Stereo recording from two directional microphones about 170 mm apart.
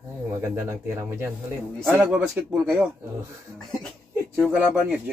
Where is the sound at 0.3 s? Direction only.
15° right (ahead or behind).